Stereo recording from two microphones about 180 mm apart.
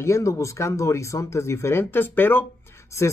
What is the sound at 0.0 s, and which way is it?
Speech, 15° left (ahead or behind).